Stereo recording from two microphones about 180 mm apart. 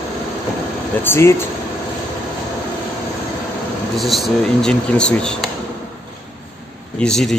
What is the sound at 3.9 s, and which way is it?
Speech, centre (ahead or behind).